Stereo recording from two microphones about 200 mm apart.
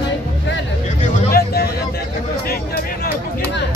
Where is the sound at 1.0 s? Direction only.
40° left (ahead or behind).